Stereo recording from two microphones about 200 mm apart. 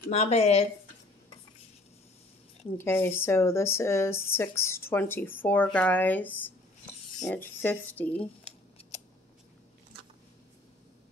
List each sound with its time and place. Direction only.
0.1 s speech: 30° left (ahead or behind)
2.8 s speech: 10° left (ahead or behind)